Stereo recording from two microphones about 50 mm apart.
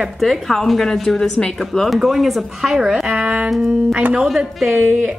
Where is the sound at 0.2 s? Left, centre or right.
Centre.